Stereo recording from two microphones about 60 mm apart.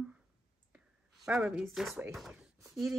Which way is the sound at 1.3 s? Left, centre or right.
Right.